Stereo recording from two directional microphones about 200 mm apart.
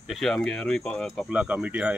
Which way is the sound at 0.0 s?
Centre (ahead or behind).